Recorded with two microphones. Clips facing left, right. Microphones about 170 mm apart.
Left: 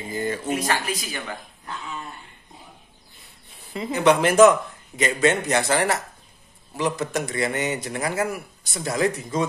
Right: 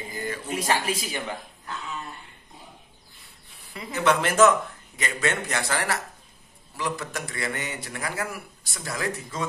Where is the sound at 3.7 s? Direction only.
20° left (ahead or behind).